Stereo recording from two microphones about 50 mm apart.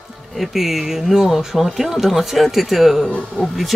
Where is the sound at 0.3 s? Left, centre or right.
Centre.